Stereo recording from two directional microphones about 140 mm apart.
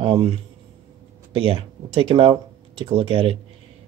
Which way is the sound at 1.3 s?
40° right (ahead or behind).